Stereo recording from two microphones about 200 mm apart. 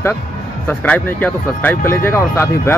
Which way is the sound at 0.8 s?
5° left (ahead or behind).